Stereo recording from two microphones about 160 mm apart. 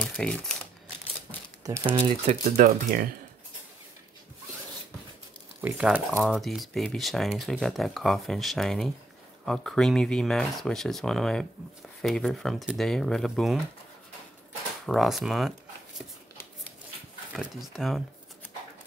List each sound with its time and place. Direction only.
0.0 s speech: 5° left (ahead or behind)
2.0 s speech: 40° right (ahead or behind)
2.4 s speech: 55° right (ahead or behind)
5.6 s speech: 10° right (ahead or behind)
14.9 s speech: centre (ahead or behind)
17.3 s speech: 5° right (ahead or behind)